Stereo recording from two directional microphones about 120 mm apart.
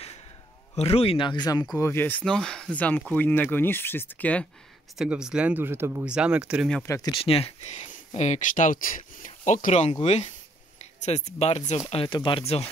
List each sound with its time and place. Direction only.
0.7 s speech: 60° left (ahead or behind); by 1.7 s 35° left (ahead or behind)
1.8 s speech: 20° left (ahead or behind)
2.2 s speech: 5° left (ahead or behind)
4.9 s speech: 5° right (ahead or behind)
6.0 s speech: 10° right (ahead or behind)
6.9 s speech: 30° left (ahead or behind)
7.2 s speech: 55° left (ahead or behind)
11.9 s speech: 45° left (ahead or behind)